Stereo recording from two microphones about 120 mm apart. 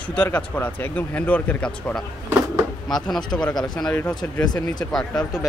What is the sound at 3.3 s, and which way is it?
Speech, 15° left (ahead or behind).